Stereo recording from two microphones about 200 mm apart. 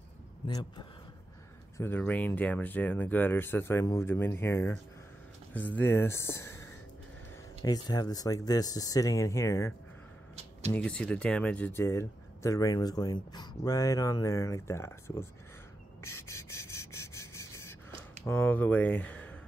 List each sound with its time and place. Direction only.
0.5 s speech: 20° left (ahead or behind)
1.8 s speech: 10° left (ahead or behind)
7.6 s speech: 20° left (ahead or behind)
16.0 s a sound: 15° left (ahead or behind)
18.2 s speech: 10° left (ahead or behind)